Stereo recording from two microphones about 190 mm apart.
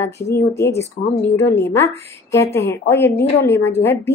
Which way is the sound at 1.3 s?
15° left (ahead or behind).